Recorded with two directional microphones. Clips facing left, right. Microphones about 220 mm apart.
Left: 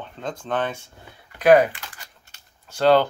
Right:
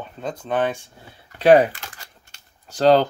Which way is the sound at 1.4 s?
30° right (ahead or behind).